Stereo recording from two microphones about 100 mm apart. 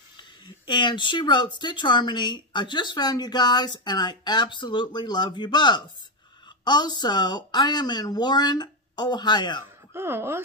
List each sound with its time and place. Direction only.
0.2 s speech: 50° left (ahead or behind)
9.9 s speech: 25° right (ahead or behind)